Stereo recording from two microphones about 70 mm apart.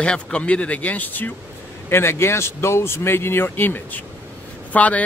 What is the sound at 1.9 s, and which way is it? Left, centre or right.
Speech, left.